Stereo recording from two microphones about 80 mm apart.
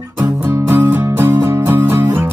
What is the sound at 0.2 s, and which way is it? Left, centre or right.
Music, right.